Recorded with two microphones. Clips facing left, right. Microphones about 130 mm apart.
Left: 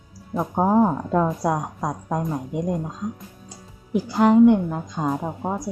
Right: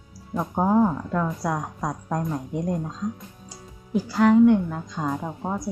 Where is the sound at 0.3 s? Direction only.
15° left (ahead or behind).